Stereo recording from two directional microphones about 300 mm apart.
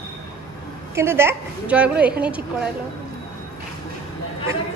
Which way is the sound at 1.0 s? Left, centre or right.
Centre.